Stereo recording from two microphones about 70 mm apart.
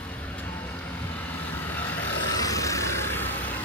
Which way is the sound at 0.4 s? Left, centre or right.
Left.